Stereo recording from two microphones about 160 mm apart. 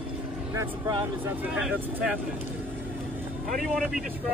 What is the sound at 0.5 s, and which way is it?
Speech, 25° right (ahead or behind).